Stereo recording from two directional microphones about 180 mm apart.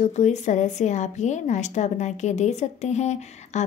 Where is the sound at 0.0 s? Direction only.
40° left (ahead or behind).